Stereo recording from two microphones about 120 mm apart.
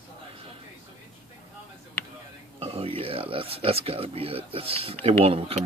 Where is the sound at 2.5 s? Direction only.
50° right (ahead or behind).